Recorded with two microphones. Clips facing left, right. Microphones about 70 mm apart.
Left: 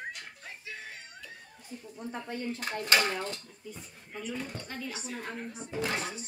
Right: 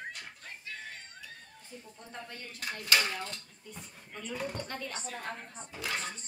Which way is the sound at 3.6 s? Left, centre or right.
Centre.